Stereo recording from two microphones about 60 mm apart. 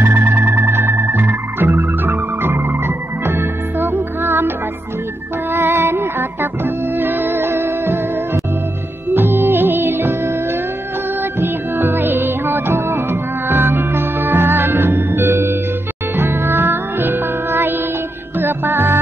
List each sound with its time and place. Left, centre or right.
0.0 s organ: right
3.3 s music: right
5.5 s music: right
9.1 s music: right
11.3 s music: right